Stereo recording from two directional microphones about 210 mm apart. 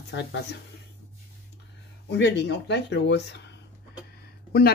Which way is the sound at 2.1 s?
55° left (ahead or behind).